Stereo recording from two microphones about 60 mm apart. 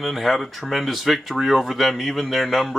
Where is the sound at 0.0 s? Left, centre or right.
Centre.